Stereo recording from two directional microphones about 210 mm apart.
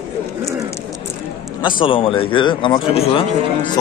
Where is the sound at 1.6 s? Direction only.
20° left (ahead or behind).